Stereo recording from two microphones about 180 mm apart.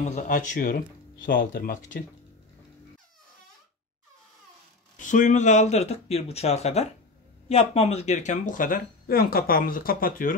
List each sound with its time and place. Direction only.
0.0 s speech: 45° left (ahead or behind)
4.9 s speech: 45° left (ahead or behind)